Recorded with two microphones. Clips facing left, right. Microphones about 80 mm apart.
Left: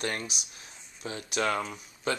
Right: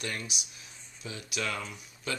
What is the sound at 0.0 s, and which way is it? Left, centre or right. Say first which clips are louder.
Speech: left 4 dB; left.